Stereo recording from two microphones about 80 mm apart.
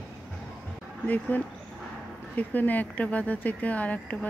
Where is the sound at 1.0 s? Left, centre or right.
Left.